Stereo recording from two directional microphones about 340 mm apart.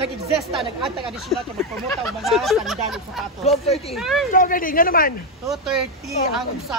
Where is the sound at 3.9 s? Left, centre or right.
Centre.